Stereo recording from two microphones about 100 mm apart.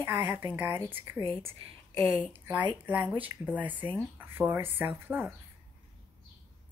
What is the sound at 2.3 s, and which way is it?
A woman's voice, 20° right (ahead or behind).